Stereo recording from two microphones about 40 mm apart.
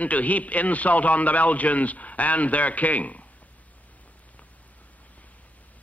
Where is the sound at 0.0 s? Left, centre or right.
Left.